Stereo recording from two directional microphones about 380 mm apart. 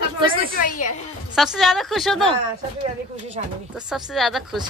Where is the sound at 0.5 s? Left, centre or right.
Left.